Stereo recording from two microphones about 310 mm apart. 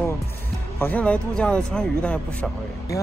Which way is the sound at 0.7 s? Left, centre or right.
Centre.